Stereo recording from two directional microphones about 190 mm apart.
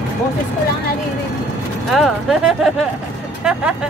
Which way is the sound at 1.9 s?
Centre (ahead or behind).